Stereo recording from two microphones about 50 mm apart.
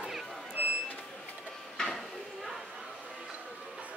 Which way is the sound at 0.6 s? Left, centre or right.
Right.